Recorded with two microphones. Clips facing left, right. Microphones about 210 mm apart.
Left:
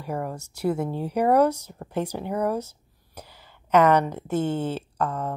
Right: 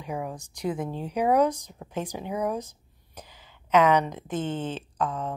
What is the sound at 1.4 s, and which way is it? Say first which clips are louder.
Speech: left 3 dB; 10° left (ahead or behind).